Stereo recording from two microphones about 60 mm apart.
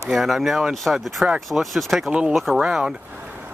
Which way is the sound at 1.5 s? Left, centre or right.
Centre.